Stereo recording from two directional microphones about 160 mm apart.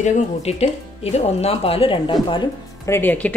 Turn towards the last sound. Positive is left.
turn(degrees=10)  # may be behind; listen again after turning